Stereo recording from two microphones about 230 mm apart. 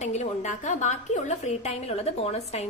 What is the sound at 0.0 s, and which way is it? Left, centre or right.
A woman's voice, left.